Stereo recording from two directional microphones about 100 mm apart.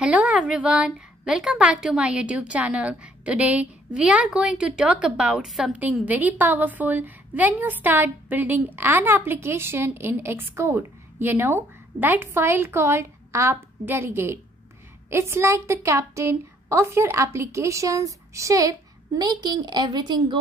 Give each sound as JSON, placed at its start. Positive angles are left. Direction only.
{"t": 0.0, "sound": "a woman's voice", "side_deg": -10}
{"t": 6.0, "sound": "a woman's voice", "side_deg": -15}